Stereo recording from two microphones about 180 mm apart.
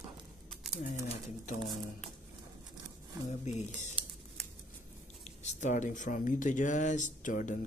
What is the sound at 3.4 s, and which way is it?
Speech, 40° left (ahead or behind).